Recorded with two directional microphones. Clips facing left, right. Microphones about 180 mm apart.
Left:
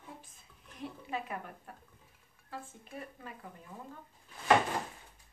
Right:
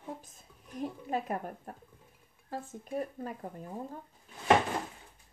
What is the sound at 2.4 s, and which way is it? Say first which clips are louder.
Speech: right 6 dB; 40° right (ahead or behind).